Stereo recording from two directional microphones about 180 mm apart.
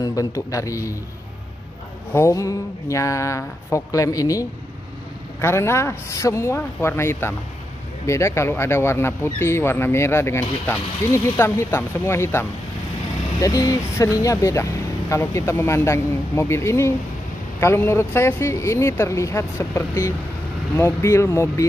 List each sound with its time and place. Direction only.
0.0 s speech: 20° left (ahead or behind)
2.1 s speech: 15° left (ahead or behind)